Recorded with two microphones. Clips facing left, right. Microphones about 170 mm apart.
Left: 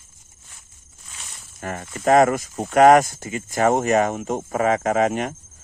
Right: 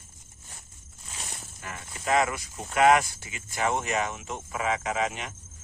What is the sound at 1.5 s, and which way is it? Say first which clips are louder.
Speech: left 12 dB; 50° left (ahead or behind).